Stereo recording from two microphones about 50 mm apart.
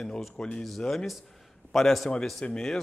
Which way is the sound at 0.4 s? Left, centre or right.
Centre.